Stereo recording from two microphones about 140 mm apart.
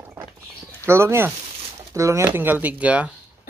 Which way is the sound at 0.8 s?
20° right (ahead or behind).